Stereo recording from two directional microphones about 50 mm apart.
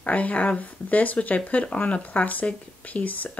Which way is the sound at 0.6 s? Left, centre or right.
Left.